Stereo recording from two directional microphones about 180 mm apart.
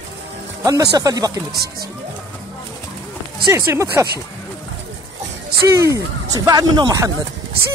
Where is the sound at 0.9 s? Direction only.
20° right (ahead or behind).